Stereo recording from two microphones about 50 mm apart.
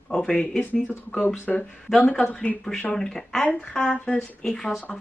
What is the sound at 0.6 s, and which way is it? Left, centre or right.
Speech, left.